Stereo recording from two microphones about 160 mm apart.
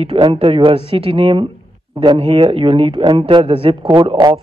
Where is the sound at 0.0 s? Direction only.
40° right (ahead or behind).